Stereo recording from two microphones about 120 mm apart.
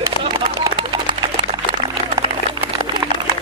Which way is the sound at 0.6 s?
35° right (ahead or behind).